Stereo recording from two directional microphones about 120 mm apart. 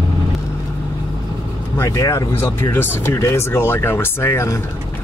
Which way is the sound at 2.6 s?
15° left (ahead or behind).